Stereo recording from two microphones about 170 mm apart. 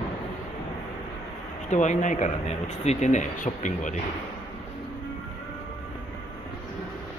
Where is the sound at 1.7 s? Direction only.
45° left (ahead or behind).